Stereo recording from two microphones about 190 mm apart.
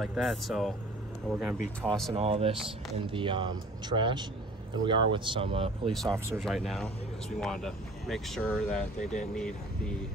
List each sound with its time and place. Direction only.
0.0 s speech: centre (ahead or behind)
2.1 s speech: 30° right (ahead or behind)
6.0 s speech: 15° right (ahead or behind)
6.4 s speech: centre (ahead or behind)